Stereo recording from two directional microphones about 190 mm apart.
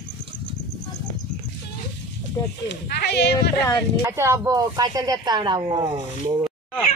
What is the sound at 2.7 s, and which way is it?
Speech, 60° left (ahead or behind).